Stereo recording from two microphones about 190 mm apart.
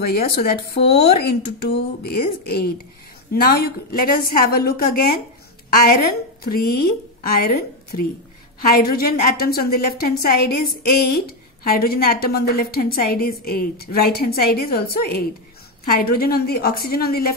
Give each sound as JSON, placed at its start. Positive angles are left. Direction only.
{"t": 0.0, "sound": "a woman's voice", "side_deg": 55}